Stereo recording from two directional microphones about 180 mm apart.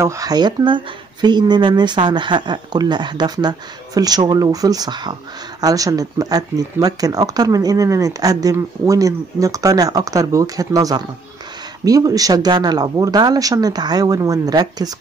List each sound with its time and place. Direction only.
0.0 s speech: 20° right (ahead or behind)